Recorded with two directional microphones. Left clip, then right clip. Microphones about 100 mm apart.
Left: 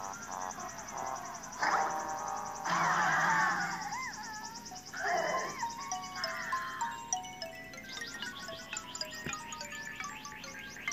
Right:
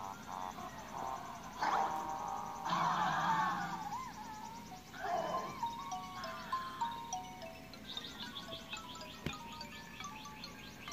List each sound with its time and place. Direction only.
0.0 s music: 30° left (ahead or behind)
0.9 s a sound: 30° left (ahead or behind)
1.6 s music: 5° right (ahead or behind)
2.0 s music: 30° left (ahead or behind)